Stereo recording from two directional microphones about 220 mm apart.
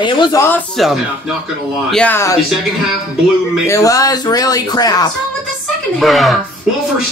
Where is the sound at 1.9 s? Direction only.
5° left (ahead or behind).